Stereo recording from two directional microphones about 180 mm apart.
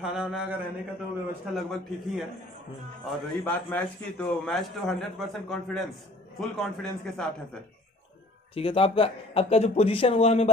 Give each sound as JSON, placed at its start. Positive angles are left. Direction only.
{"t": 0.0, "sound": "a man's voice", "side_deg": -5}
{"t": 8.5, "sound": "speech", "side_deg": 30}